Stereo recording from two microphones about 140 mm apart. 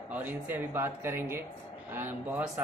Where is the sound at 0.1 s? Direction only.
15° right (ahead or behind).